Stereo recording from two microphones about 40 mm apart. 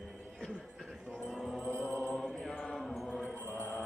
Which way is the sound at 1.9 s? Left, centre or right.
Left.